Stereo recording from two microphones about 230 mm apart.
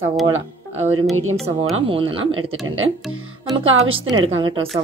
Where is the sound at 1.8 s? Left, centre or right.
Right.